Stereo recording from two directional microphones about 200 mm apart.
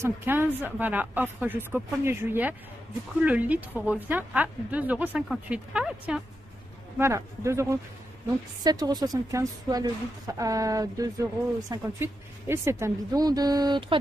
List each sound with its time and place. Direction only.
0.0 s a woman's voice: 10° right (ahead or behind)